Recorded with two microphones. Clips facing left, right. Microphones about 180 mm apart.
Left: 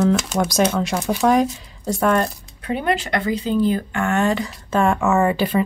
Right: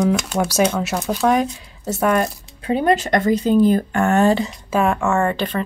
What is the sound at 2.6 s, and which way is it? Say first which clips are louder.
Music: right 5 dB; 30° right (ahead or behind).